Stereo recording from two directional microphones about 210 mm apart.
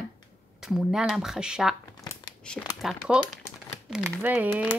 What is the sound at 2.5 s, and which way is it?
Speech, centre (ahead or behind).